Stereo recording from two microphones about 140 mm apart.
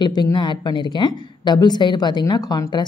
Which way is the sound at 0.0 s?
30° left (ahead or behind).